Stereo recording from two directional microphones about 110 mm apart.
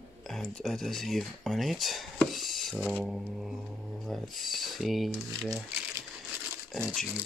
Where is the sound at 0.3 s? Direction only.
5° left (ahead or behind).